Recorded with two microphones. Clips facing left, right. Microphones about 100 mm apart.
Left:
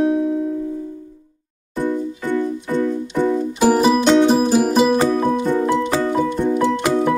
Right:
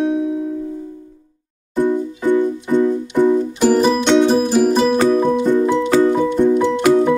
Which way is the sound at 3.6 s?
10° left (ahead or behind).